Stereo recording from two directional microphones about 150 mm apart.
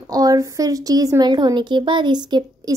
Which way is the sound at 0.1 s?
25° right (ahead or behind).